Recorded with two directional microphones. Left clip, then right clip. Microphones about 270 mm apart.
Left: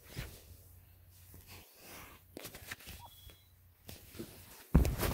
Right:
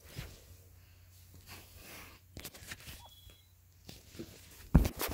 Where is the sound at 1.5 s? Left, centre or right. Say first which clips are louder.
Right 2 dB; centre.